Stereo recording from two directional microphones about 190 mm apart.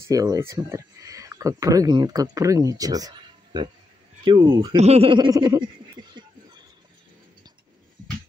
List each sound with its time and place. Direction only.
0.0 s speech: 15° right (ahead or behind)
4.7 s snicker: 35° right (ahead or behind)